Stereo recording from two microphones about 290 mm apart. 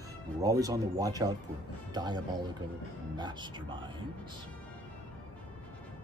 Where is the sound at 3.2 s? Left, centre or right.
Centre.